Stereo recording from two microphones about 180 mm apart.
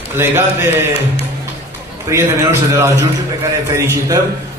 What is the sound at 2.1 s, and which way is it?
A man's voice, 15° right (ahead or behind).